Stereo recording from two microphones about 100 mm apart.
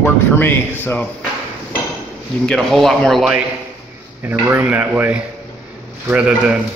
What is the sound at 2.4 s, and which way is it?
Speech, 5° left (ahead or behind).